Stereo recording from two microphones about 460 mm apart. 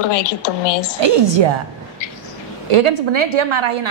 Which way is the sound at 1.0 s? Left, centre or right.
Right.